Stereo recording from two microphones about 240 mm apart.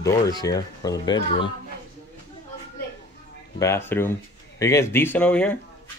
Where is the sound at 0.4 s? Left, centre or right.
Centre.